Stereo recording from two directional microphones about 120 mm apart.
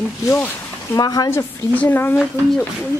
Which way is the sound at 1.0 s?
30° left (ahead or behind).